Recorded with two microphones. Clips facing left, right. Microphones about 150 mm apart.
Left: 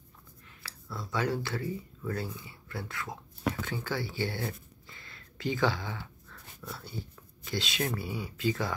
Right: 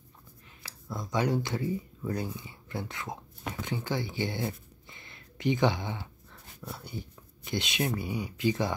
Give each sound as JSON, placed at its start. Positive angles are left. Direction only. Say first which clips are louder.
{"t": 0.6, "sound": "speech", "louder": "right 3 dB", "side_deg": -20}
{"t": 3.6, "sound": "a sound", "louder": "right 2 dB", "side_deg": -20}
{"t": 7.4, "sound": "speech", "louder": "right 2 dB", "side_deg": -20}